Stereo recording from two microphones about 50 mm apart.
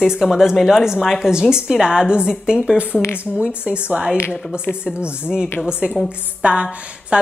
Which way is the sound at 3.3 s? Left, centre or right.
Right.